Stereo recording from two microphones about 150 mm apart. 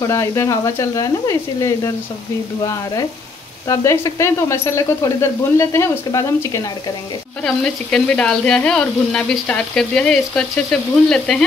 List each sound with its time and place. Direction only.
0.0 s speech: 20° left (ahead or behind)
7.4 s speech: 5° left (ahead or behind)